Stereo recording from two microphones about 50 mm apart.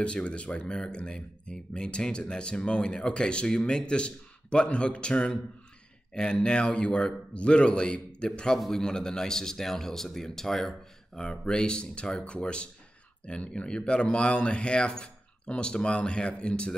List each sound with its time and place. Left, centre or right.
0.0 s a man's voice: left
8.5 s a man's voice: centre
11.1 s a man's voice: centre